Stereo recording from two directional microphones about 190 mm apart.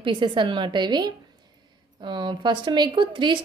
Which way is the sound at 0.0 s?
25° right (ahead or behind).